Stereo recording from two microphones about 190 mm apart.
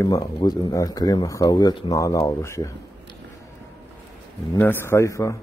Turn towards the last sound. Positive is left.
turn(degrees=15)  # may be behind; listen again after turning